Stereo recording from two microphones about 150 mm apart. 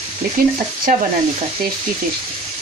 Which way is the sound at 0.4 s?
75° right (ahead or behind).